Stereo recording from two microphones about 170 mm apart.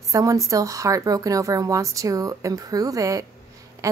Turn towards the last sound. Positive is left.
turn(degrees=-20)  # may be behind; listen again after turning